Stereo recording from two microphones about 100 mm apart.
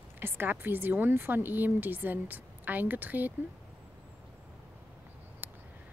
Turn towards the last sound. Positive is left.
turn(degrees=-20)  # may be behind; listen again after turning